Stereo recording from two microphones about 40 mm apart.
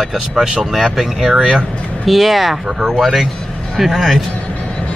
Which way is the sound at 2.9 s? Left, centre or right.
Centre.